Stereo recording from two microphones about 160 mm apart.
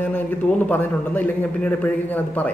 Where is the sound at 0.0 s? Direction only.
10° left (ahead or behind).